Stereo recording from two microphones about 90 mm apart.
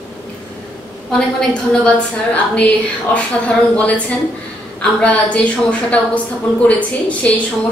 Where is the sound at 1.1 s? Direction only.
10° left (ahead or behind).